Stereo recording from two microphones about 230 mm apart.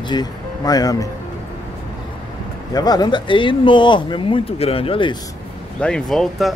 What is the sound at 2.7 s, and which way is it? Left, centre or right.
Speech, centre.